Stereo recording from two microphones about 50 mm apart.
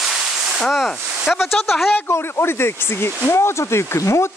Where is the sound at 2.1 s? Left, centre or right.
Left.